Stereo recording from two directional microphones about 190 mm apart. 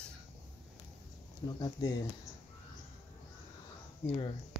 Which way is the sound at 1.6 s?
20° left (ahead or behind).